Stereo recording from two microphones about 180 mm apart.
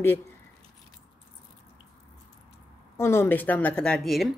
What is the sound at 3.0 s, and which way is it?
A woman's voice, 15° left (ahead or behind).